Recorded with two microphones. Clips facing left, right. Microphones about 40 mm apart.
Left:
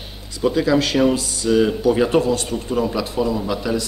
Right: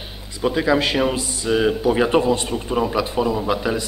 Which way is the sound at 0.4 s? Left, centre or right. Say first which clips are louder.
Left 1 dB; centre.